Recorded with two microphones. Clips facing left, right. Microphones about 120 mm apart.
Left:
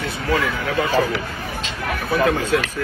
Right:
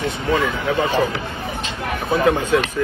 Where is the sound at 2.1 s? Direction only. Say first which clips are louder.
Right 2 dB; 25° right (ahead or behind).